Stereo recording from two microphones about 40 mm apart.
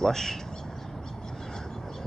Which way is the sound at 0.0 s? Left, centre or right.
Centre.